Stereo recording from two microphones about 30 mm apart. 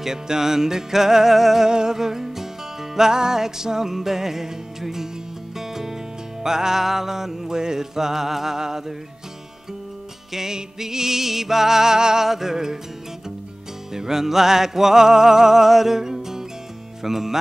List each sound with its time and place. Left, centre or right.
0.0 s music: centre
1.7 s music: right
10.3 s music: centre
13.9 s music: centre